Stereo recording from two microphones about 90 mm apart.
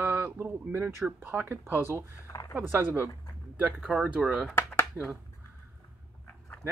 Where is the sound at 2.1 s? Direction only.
40° left (ahead or behind).